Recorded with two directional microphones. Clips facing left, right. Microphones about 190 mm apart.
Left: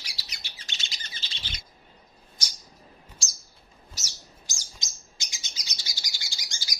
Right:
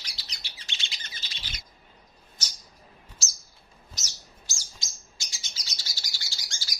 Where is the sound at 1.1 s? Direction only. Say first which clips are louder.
Left 1 dB; 25° left (ahead or behind).